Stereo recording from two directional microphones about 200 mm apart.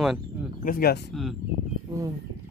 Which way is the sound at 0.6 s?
50° left (ahead or behind).